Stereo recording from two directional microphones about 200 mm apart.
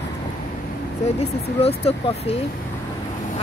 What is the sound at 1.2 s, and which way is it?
Speech, 30° left (ahead or behind).